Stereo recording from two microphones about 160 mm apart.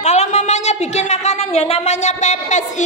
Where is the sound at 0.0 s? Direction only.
45° left (ahead or behind).